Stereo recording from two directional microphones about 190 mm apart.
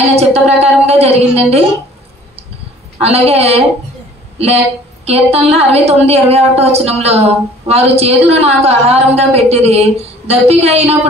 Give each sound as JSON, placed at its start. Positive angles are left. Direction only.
{"t": 0.1, "sound": "a sound", "side_deg": -35}
{"t": 3.0, "sound": "a woman's voice", "side_deg": -35}
{"t": 5.0, "sound": "a woman's voice", "side_deg": -35}